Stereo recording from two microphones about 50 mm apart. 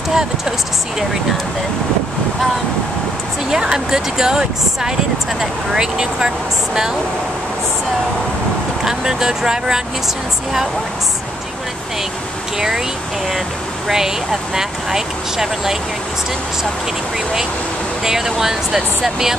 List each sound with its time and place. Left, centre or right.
0.1 s speech: centre
3.4 s speech: centre
8.8 s speech: centre
12.5 s speech: centre
13.8 s speech: centre
18.0 s speech: centre